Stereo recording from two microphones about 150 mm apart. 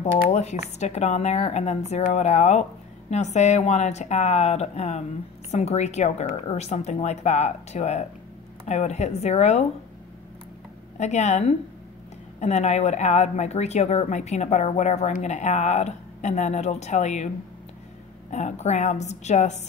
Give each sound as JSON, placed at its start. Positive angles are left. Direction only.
{"t": 0.0, "sound": "speech", "side_deg": 50}
{"t": 11.0, "sound": "speech", "side_deg": 50}
{"t": 18.3, "sound": "speech", "side_deg": 50}